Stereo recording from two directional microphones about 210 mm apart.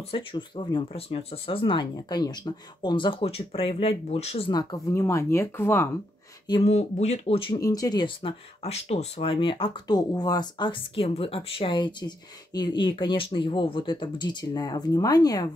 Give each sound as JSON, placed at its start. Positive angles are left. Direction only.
{"t": 0.1, "sound": "speech", "side_deg": 25}
{"t": 6.4, "sound": "speech", "side_deg": 25}